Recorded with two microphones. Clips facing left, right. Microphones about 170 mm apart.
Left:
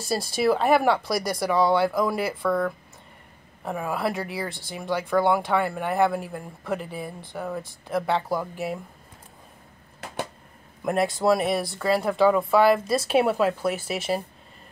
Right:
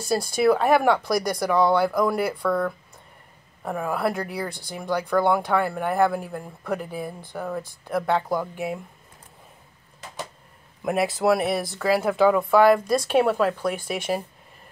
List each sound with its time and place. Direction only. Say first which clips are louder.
0.0 s speech: right 3 dB; centre (ahead or behind)
10.0 s a sound: left 3 dB; 60° left (ahead or behind)
10.8 s speech: even; centre (ahead or behind)